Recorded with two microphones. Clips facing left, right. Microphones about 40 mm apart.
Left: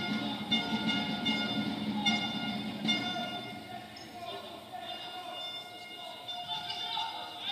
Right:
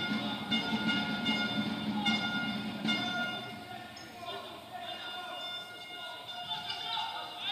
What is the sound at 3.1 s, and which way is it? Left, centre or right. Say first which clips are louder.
Music: right 2 dB; right.